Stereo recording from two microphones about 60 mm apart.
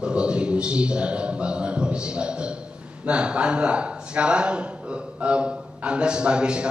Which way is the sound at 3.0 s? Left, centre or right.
Centre.